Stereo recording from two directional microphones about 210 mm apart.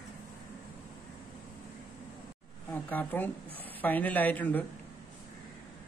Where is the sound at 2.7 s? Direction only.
10° left (ahead or behind).